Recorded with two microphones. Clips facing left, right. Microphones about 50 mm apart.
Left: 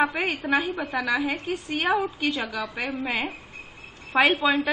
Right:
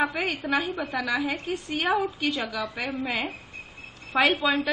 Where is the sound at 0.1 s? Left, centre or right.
Centre.